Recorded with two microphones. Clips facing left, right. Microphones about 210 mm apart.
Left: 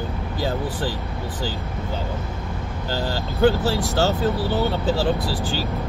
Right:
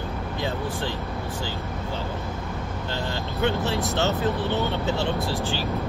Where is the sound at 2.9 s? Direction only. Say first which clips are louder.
Left 5 dB; 30° left (ahead or behind).